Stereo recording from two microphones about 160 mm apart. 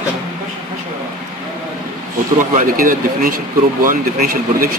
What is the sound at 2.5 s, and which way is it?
Speech, 60° right (ahead or behind).